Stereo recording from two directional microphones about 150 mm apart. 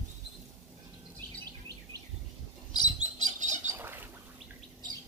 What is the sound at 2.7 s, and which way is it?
Bird, 30° left (ahead or behind).